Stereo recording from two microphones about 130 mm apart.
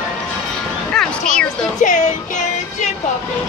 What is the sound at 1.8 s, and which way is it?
Music, 75° left (ahead or behind).